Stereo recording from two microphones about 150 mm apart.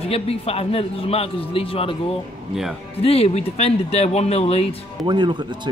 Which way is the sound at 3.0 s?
40° left (ahead or behind).